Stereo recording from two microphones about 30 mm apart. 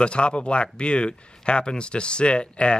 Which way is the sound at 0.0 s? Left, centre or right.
Left.